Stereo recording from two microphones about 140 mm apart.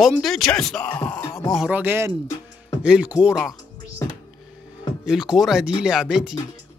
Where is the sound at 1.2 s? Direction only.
25° left (ahead or behind).